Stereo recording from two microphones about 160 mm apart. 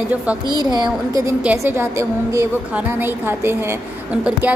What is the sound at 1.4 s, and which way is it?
A woman's voice, 10° right (ahead or behind).